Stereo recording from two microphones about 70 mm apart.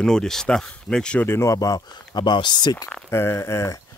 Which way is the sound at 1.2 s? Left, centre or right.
Left.